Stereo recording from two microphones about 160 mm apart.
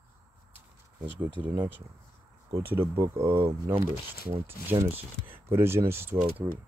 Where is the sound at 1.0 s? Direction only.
10° right (ahead or behind).